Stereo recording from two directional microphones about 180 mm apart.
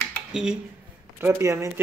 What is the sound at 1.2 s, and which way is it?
Speech, 15° right (ahead or behind).